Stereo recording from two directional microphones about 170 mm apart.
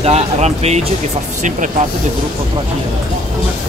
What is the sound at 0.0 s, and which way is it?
Speech, 40° right (ahead or behind).